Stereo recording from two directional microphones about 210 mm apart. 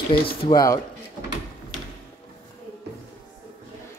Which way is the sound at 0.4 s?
20° left (ahead or behind).